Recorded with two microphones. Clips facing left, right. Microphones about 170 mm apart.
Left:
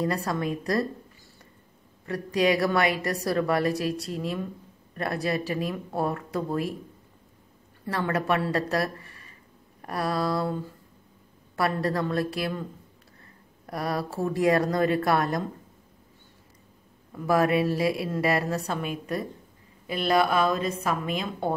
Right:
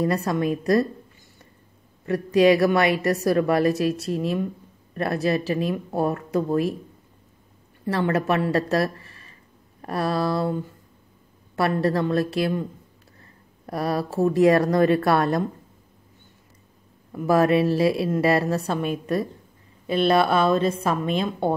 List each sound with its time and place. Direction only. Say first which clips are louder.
0.0 s speech: right 5 dB; 20° right (ahead or behind)
2.0 s speech: right 7 dB; 25° right (ahead or behind)
8.0 s a woman's voice: right 3 dB; 20° right (ahead or behind)
11.5 s speech: right 4 dB; 25° right (ahead or behind)
13.7 s speech: right 4 dB; 25° right (ahead or behind)
17.3 s speech: right 4 dB; 25° right (ahead or behind)
19.9 s speech: right 4 dB; 25° right (ahead or behind)